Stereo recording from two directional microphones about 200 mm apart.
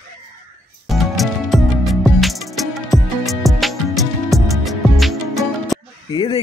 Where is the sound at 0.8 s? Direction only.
Centre (ahead or behind).